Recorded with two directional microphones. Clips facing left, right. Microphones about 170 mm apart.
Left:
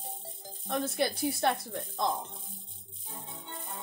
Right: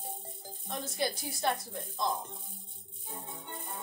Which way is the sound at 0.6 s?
60° left (ahead or behind).